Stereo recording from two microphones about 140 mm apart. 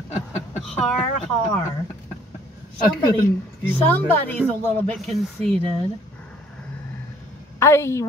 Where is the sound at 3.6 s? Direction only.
15° left (ahead or behind).